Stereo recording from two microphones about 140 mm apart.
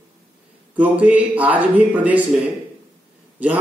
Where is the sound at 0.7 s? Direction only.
10° right (ahead or behind).